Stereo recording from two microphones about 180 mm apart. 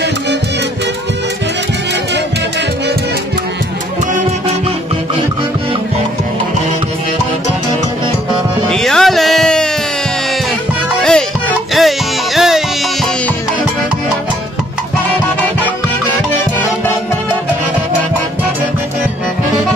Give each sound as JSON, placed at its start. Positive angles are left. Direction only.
{"t": 8.3, "sound": "music", "side_deg": -25}
{"t": 8.7, "sound": "music", "side_deg": 0}
{"t": 11.0, "sound": "music", "side_deg": 5}